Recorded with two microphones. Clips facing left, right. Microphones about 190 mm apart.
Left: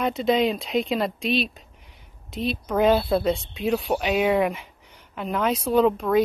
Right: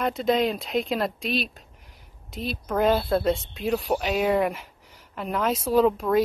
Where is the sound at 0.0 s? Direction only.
Centre (ahead or behind).